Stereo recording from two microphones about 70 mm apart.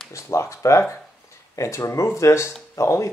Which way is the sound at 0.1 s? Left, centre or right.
Left.